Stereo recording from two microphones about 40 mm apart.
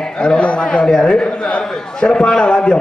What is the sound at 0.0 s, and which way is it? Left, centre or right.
A man's voice, centre.